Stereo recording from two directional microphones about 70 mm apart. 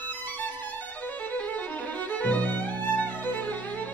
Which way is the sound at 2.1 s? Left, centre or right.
Left.